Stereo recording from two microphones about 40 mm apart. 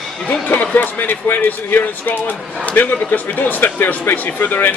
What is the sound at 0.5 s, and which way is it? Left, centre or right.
A man's voice, left.